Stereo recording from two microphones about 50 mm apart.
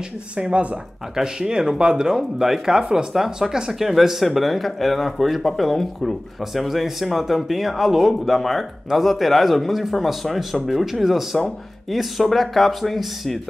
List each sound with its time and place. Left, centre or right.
0.4 s speech: centre